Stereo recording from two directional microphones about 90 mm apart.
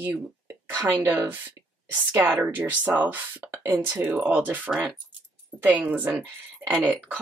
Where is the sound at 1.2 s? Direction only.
25° right (ahead or behind).